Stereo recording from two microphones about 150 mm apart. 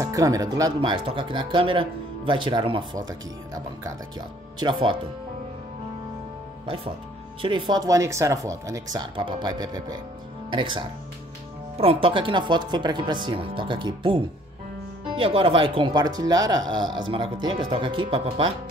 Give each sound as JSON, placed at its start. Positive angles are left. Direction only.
{"t": 0.0, "sound": "speech", "side_deg": -25}
{"t": 0.7, "sound": "speech", "side_deg": -35}
{"t": 4.6, "sound": "speech", "side_deg": -30}
{"t": 6.6, "sound": "speech", "side_deg": -35}